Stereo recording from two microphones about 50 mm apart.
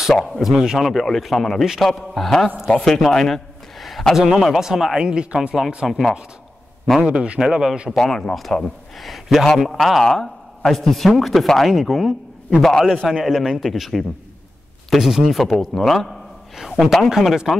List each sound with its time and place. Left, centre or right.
0.1 s speech: centre
1.0 s a man's voice: centre
5.0 s speech: centre
5.9 s speech: centre
7.0 s speech: centre
7.9 s a man's voice: centre
12.6 s speech: centre
13.2 s a man's voice: centre